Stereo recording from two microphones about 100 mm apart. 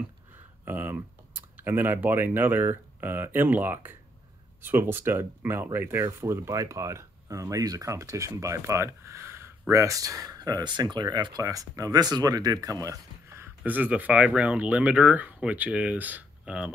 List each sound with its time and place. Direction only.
0.7 s speech: 20° right (ahead or behind); by 11.4 s 45° right (ahead or behind)
11.4 s speech: 35° right (ahead or behind)
13.6 s speech: 15° right (ahead or behind)